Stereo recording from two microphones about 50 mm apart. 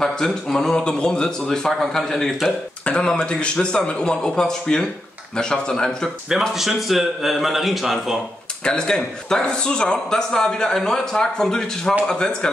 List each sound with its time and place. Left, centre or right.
0.0 s speech: centre
2.8 s a man's voice: left
6.5 s a man's voice: centre
8.6 s speech: centre